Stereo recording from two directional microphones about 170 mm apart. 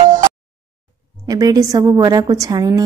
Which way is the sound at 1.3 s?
20° right (ahead or behind).